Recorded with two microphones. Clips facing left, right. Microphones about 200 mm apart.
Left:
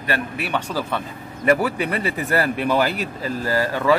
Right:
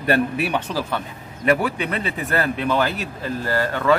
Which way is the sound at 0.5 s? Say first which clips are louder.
Even; 5° right (ahead or behind).